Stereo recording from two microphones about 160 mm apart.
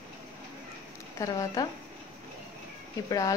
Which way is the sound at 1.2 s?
25° left (ahead or behind).